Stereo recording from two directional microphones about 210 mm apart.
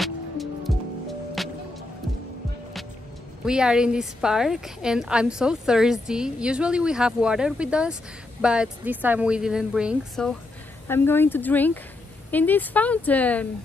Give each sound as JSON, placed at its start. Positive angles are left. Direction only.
{"t": 0.0, "sound": "music", "side_deg": 0}
{"t": 3.4, "sound": "a woman's voice", "side_deg": -5}
{"t": 10.9, "sound": "speech", "side_deg": 10}